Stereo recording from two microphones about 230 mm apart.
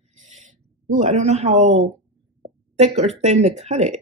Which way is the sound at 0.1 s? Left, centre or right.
Right.